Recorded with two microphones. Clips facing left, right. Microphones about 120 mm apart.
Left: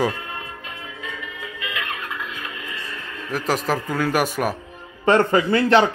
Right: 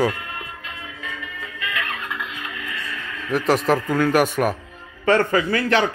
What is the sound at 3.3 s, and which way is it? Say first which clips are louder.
Speech: right 4 dB; centre (ahead or behind).